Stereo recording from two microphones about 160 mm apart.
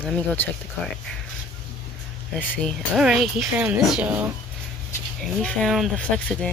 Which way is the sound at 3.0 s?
5° right (ahead or behind).